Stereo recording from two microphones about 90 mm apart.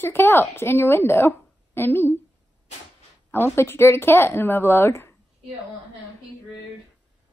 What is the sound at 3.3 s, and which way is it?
Speech, 25° left (ahead or behind).